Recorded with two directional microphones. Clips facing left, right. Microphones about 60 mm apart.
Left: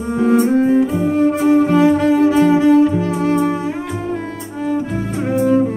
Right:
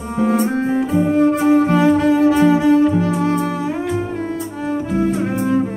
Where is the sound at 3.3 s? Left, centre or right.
Centre.